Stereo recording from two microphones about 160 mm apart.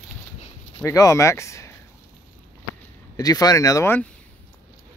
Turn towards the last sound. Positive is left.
turn(degrees=20)  # may be behind; listen again after turning